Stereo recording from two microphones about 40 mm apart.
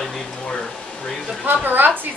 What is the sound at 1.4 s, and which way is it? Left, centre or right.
Speech, right.